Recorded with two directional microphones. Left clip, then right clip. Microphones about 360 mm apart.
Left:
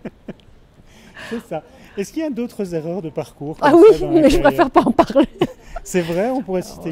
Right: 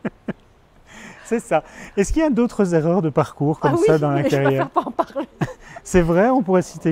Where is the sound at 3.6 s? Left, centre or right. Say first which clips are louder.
Left 8 dB; left.